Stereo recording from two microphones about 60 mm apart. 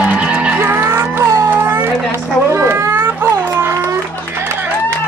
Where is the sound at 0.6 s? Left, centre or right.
Right.